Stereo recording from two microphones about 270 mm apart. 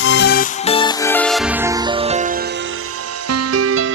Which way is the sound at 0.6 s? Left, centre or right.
Centre.